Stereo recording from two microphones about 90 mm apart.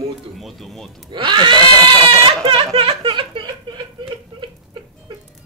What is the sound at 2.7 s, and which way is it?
Speech, 90° right.